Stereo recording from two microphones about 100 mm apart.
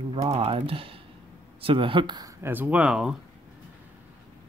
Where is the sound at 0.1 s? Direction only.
75° right (ahead or behind); by 2.3 s 45° right (ahead or behind).